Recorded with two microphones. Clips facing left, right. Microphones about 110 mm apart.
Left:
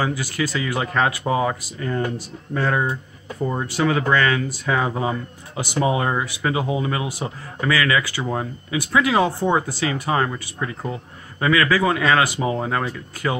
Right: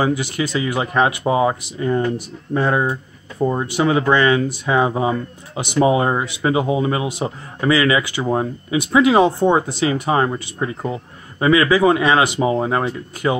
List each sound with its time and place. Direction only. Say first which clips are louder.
0.0 s speech: right 4 dB; 20° right (ahead or behind)